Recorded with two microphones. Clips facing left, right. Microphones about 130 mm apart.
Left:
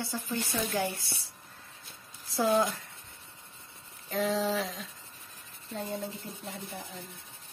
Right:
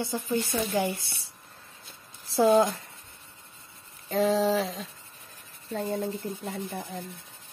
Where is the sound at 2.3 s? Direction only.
30° right (ahead or behind).